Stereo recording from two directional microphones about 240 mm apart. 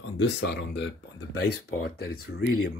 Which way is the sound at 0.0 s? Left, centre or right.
Left.